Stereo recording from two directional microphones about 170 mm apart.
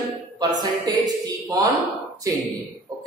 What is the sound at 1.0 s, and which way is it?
Speech, 20° right (ahead or behind).